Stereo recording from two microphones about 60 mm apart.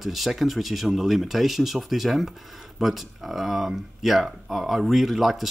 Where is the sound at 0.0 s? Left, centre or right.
Centre.